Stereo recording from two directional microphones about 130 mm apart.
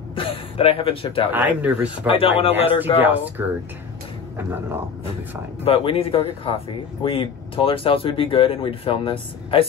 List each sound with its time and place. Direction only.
0.1 s speech: 45° left (ahead or behind)
1.3 s speech: 10° right (ahead or behind)
2.0 s speech: 45° left (ahead or behind)
3.0 s speech: 15° right (ahead or behind)
5.6 s speech: 45° left (ahead or behind)